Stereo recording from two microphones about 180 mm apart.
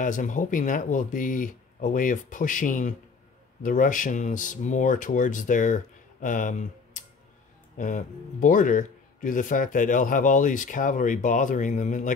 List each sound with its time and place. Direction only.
0.0 s speech: 45° left (ahead or behind)